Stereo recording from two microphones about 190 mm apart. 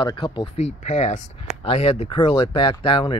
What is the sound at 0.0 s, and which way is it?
Speech, 25° left (ahead or behind).